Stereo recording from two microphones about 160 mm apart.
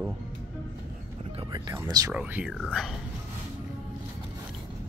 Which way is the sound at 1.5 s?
25° right (ahead or behind).